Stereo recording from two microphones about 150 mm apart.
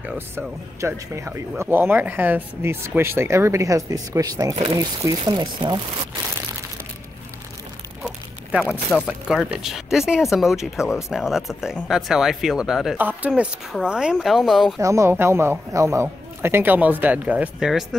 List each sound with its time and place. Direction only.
0.4 s a man's voice: 20° right (ahead or behind)
8.0 s a sound: 5° right (ahead or behind)
8.9 s a man's voice: centre (ahead or behind)
13.3 s speech: centre (ahead or behind)
14.8 s a man's voice: 20° right (ahead or behind); by 17.8 s 5° right (ahead or behind)